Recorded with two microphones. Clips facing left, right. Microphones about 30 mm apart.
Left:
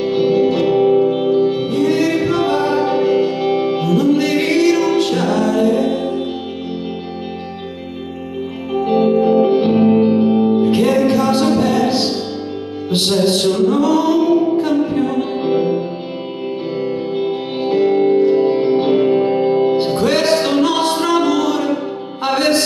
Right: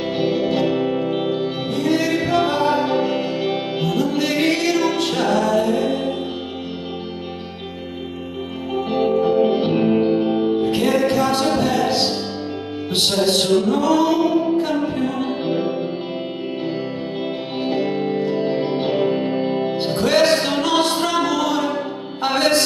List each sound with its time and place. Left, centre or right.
0.1 s music: centre
8.8 s music: centre
15.5 s music: centre
17.2 s music: centre